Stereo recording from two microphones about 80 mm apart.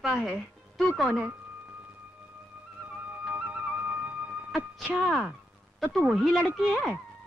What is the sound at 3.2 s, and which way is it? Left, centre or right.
Music, centre.